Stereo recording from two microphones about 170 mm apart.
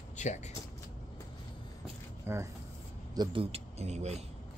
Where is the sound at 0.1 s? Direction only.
45° left (ahead or behind).